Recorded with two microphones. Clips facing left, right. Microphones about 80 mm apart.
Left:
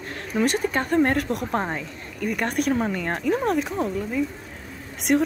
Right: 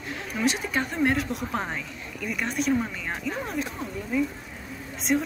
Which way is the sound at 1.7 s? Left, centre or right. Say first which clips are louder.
Left 3 dB; left.